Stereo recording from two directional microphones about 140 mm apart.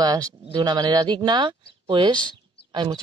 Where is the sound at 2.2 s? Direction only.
30° right (ahead or behind).